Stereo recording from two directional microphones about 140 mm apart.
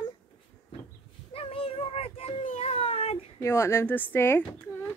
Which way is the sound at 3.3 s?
20° left (ahead or behind).